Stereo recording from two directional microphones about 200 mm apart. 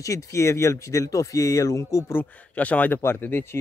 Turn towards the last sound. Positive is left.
turn(degrees=10)  # may be behind; listen again after turning